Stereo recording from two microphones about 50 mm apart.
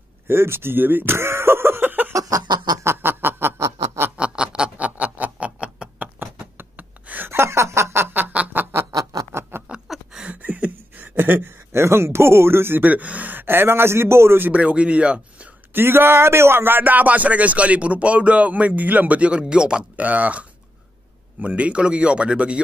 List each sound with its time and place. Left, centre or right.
0.3 s a sound: right
2.8 s snicker: right
4.2 s a sound: centre
6.4 s gasp: right
7.2 s snicker: right
8.2 s snicker: right
9.3 s a sound: right
10.4 s a sound: right
11.1 s speech: right
12.8 s speech: right
14.5 s speech: right
15.7 s speech: right; by 19.8 s centre
20.0 s a man's voice: right